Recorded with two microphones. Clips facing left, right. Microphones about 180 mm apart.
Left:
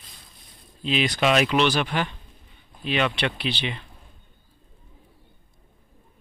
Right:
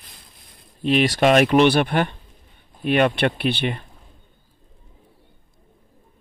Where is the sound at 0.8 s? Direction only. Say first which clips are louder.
Right 5 dB; 55° right (ahead or behind).